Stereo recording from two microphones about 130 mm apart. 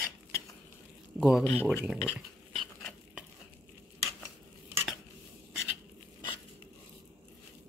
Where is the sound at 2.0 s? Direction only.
Centre (ahead or behind).